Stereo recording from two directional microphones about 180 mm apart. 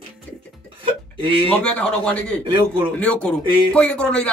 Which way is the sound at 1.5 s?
5° left (ahead or behind).